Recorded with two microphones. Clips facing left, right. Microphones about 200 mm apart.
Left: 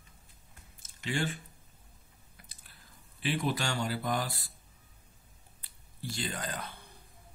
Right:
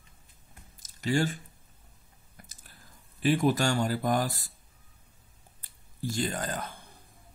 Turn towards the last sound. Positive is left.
turn(degrees=-45)  # may be behind; listen again after turning